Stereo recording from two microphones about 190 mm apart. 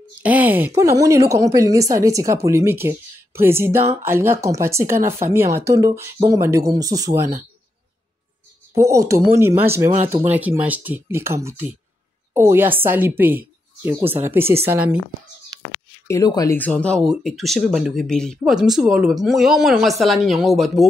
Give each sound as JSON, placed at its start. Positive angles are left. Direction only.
{"t": 0.2, "sound": "speech", "side_deg": -10}
{"t": 8.7, "sound": "speech", "side_deg": -15}
{"t": 16.1, "sound": "speech", "side_deg": 20}